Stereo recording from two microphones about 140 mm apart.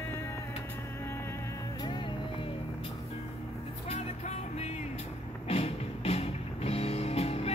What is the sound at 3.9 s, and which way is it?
Music, 50° left (ahead or behind).